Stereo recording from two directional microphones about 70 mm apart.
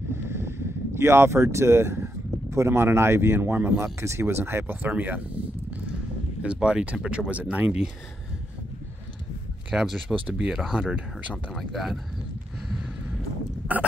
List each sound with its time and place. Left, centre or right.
0.1 s a sound: right
2.5 s speech: right
6.4 s speech: centre
9.7 s speech: centre
10.2 s speech: centre
10.5 s speech: centre
11.5 s speech: centre